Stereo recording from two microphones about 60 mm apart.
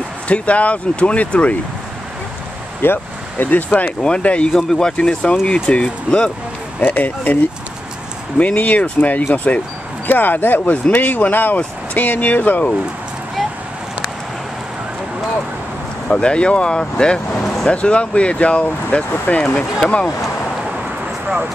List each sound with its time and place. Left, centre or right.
0.3 s speech: left
2.8 s speech: left; by 4.6 s centre
4.6 s speech: centre
4.9 s speech: centre
6.9 s speech: left
8.4 s speech: left
16.1 s speech: centre